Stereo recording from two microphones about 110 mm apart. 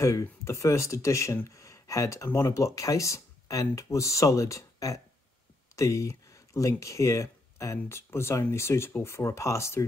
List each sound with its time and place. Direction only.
0.0 s speech: 25° left (ahead or behind)